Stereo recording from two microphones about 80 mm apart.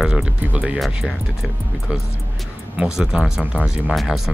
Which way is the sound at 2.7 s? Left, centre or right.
Centre.